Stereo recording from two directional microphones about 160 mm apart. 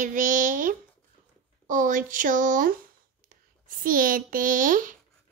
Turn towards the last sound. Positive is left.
turn(degrees=-55)  # may be behind; listen again after turning